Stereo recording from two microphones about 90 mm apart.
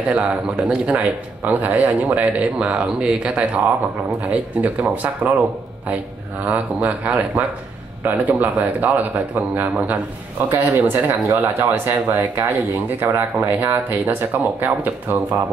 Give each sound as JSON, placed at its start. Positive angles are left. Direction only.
{"t": 0.1, "sound": "speech", "side_deg": -10}
{"t": 6.4, "sound": "speech", "side_deg": -15}